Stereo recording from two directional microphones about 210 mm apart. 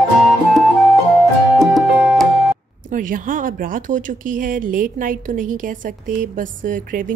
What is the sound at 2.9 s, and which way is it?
Speech, 40° right (ahead or behind).